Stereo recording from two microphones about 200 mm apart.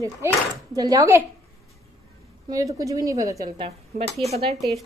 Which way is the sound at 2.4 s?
15° right (ahead or behind).